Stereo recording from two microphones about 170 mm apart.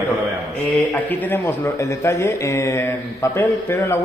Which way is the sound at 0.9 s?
10° left (ahead or behind).